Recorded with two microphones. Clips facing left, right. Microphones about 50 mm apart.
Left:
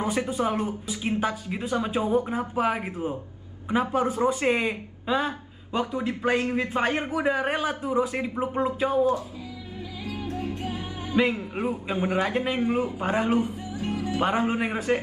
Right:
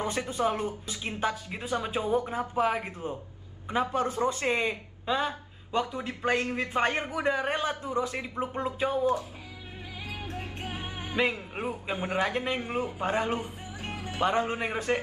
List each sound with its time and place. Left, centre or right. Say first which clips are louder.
0.0 s speech: left 3 dB; centre
10.0 s music: left 7 dB; right
11.6 s a man's voice: left 5 dB; centre
12.2 s a man's voice: left 1 dB; centre
13.7 s music: left 9 dB; right
14.2 s speech: left 1 dB; centre